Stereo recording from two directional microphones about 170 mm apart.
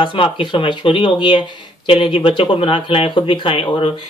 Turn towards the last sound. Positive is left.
turn(degrees=30)  # may be behind; listen again after turning